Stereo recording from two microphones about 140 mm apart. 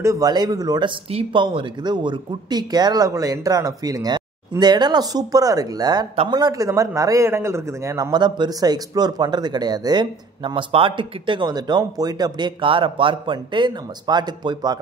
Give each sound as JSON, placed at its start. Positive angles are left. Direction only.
{"t": 0.0, "sound": "a man's voice", "side_deg": -25}